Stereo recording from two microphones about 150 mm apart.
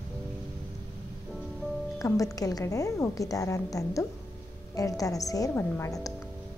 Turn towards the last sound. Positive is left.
turn(degrees=20)  # may be behind; listen again after turning